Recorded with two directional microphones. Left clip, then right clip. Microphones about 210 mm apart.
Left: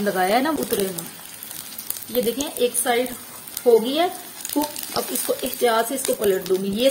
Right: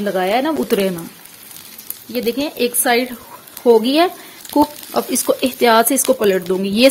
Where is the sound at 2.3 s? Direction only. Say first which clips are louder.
Right 4 dB; 40° right (ahead or behind).